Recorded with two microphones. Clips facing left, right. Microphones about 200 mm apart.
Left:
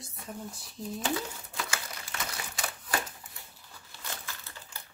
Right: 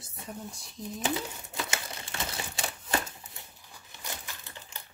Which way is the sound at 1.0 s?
25° right (ahead or behind).